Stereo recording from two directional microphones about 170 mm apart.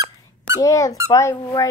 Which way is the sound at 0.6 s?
20° left (ahead or behind).